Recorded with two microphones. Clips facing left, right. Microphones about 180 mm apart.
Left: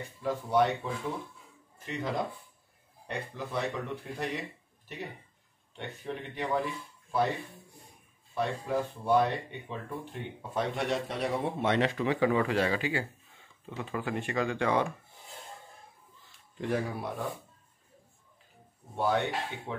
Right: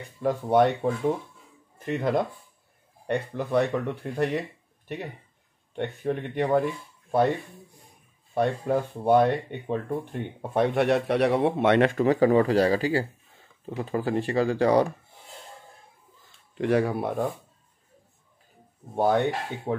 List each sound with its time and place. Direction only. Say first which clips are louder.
0.2 s speech: right 6 dB; 55° right (ahead or behind)
5.8 s speech: right 10 dB; 55° right (ahead or behind)
8.4 s speech: right 6 dB; 55° right (ahead or behind); by 14.9 s 35° right (ahead or behind)
16.5 s speech: right 8 dB; 70° right (ahead or behind)
18.9 s speech: right 6 dB; 50° right (ahead or behind)